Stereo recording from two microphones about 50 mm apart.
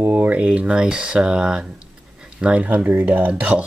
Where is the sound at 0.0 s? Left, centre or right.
Right.